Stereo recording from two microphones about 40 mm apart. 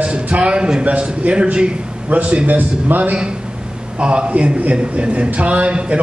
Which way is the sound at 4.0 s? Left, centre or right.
Right.